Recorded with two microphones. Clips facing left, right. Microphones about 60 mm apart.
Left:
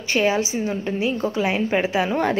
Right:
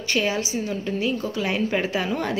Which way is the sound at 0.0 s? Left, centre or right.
Left.